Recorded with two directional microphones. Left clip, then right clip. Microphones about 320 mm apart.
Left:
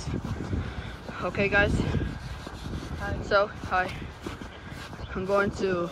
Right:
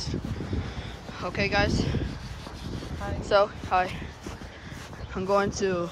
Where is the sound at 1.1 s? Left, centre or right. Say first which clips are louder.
Left 2 dB; centre.